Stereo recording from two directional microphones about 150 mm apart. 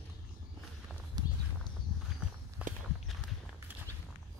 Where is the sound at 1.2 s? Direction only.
25° right (ahead or behind).